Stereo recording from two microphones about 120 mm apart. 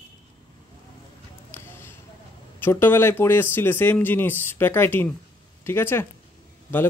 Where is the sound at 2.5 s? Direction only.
20° left (ahead or behind).